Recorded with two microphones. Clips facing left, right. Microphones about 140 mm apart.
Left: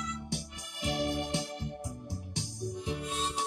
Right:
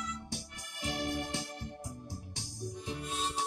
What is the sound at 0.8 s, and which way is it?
Organ, 15° left (ahead or behind).